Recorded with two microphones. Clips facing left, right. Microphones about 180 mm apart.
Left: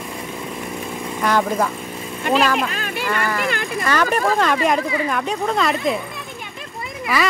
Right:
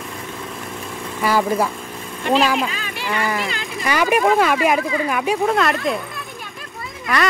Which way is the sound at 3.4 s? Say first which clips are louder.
Left 5 dB; 55° left (ahead or behind).